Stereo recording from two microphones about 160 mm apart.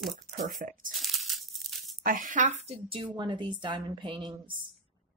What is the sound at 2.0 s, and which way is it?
Speech, 55° right (ahead or behind).